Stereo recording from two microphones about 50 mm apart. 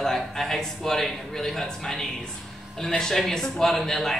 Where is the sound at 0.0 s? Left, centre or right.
Centre.